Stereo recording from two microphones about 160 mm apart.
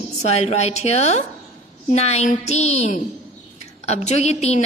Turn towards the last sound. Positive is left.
turn(degrees=40)  # may be behind; listen again after turning